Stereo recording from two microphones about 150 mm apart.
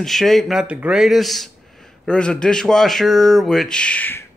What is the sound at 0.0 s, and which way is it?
A man's voice, centre (ahead or behind).